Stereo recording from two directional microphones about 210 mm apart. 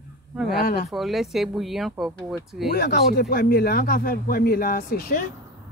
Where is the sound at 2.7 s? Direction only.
50° left (ahead or behind).